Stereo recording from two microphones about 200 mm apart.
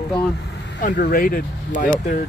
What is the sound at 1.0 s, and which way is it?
Speech, 45° left (ahead or behind).